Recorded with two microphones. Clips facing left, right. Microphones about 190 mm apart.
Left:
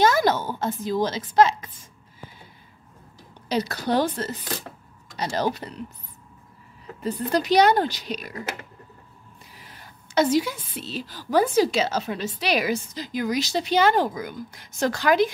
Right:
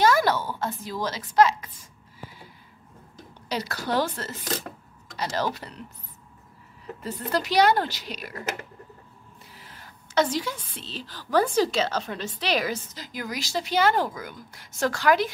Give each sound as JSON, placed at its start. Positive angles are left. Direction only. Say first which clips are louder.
{"t": 0.0, "sound": "a sound", "louder": "left 1 dB", "side_deg": 20}
{"t": 3.4, "sound": "a woman's voice", "louder": "left 5 dB", "side_deg": 20}
{"t": 7.0, "sound": "a woman's voice", "louder": "left 4 dB", "side_deg": 20}
{"t": 9.6, "sound": "a woman's voice", "louder": "left 1 dB", "side_deg": 15}